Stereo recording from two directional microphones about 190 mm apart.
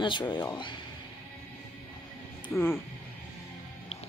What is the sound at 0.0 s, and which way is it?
Speech, 25° left (ahead or behind).